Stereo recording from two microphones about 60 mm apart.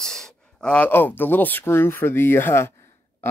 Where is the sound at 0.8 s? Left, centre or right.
Left.